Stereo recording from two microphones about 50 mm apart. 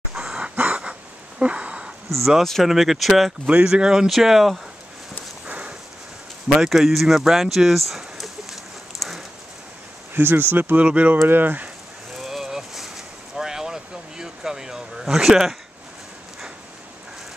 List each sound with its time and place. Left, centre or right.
0.1 s a sound: centre
0.4 s a sound: right
2.0 s speech: centre
3.4 s speech: right; by 4.6 s centre
5.5 s clip-clop: right
6.6 s speech: centre
10.1 s speech: right
10.8 s speech: right
11.2 s speech: right
12.2 s vehicle: centre